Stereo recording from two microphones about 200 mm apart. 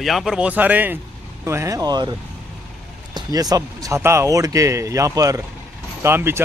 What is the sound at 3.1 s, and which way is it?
Speech, 20° right (ahead or behind).